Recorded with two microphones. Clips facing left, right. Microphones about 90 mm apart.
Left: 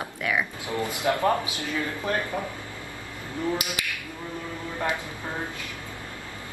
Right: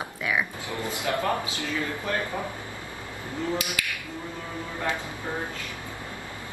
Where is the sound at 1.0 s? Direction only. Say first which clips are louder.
Left 3 dB; 20° left (ahead or behind).